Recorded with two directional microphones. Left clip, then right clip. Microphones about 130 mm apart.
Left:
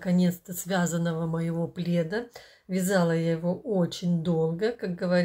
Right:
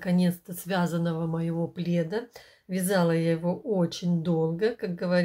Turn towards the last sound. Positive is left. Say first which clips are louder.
# even
turn(degrees=-10)  # may be behind; listen again after turning